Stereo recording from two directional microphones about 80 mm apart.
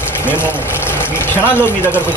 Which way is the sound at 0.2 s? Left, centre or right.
Left.